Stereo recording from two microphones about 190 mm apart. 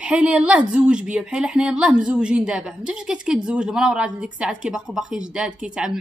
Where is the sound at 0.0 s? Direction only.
5° right (ahead or behind).